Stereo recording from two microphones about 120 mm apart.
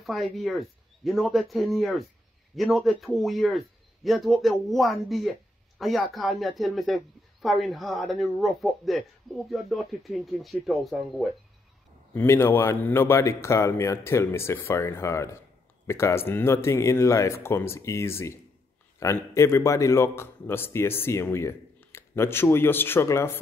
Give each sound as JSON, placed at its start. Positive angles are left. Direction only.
{"t": 0.0, "sound": "speech", "side_deg": 0}
{"t": 12.1, "sound": "speech", "side_deg": 20}